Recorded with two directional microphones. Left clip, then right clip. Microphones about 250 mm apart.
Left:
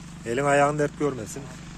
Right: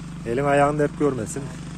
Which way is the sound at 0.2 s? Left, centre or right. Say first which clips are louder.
Right 2 dB; centre.